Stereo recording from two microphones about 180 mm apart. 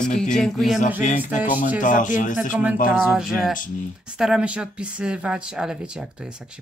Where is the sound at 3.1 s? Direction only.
5° right (ahead or behind).